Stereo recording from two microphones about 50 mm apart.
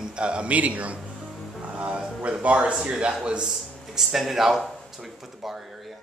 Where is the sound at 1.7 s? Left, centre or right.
Right.